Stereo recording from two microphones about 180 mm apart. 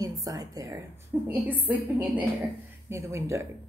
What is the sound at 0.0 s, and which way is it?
A woman's voice, 20° right (ahead or behind).